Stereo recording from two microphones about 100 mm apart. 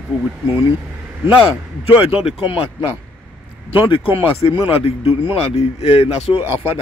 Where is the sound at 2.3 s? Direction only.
70° left (ahead or behind).